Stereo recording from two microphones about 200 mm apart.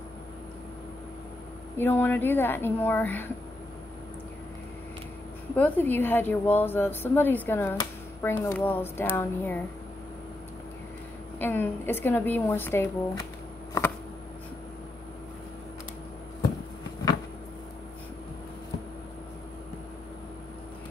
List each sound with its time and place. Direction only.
1.8 s a woman's voice: 10° left (ahead or behind)
5.6 s a woman's voice: 10° left (ahead or behind)
11.3 s a woman's voice: 10° left (ahead or behind)